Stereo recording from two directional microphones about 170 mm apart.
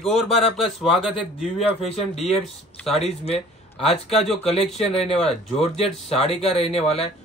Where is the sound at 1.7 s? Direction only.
35° left (ahead or behind).